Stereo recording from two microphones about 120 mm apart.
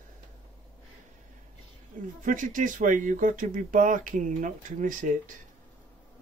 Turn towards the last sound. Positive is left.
turn(degrees=-90)